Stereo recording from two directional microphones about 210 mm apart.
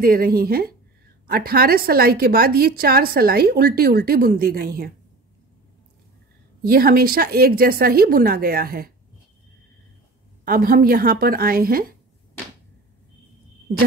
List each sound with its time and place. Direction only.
0.0 s a woman's voice: 45° right (ahead or behind)
6.6 s a woman's voice: 45° right (ahead or behind)
10.4 s a woman's voice: 45° right (ahead or behind)